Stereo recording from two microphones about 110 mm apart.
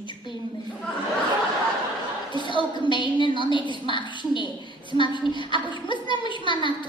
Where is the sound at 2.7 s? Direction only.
45° left (ahead or behind).